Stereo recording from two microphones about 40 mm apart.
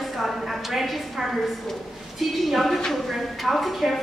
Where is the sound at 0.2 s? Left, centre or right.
Centre.